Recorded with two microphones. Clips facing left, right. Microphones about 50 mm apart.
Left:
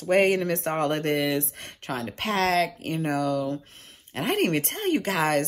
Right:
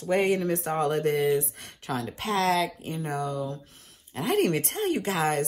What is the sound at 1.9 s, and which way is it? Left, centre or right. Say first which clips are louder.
Speech: left 1 dB; left.